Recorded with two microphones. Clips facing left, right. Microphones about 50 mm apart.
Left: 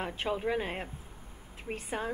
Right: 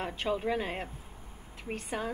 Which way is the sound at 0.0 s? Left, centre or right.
Centre.